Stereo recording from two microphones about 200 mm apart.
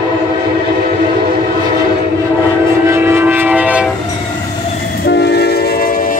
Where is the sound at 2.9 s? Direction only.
10° right (ahead or behind).